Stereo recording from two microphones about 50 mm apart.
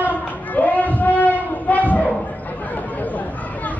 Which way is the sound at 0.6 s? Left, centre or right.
Left.